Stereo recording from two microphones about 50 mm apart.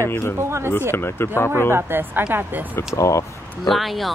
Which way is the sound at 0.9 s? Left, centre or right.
Left.